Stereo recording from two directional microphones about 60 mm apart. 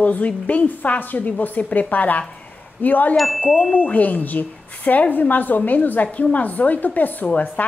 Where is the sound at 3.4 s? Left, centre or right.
Left.